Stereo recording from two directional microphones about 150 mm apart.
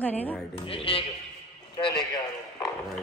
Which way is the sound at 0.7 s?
40° left (ahead or behind).